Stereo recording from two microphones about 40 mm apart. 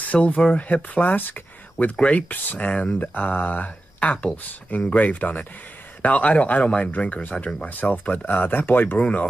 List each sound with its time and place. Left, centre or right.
0.1 s speech: left
8.3 s speech: left